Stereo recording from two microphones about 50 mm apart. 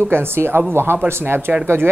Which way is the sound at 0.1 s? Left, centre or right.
Right.